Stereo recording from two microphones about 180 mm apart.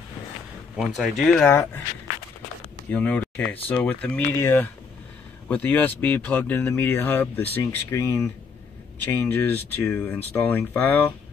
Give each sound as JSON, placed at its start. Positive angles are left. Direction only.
{"t": 0.7, "sound": "speech", "side_deg": 0}
{"t": 2.9, "sound": "speech", "side_deg": 10}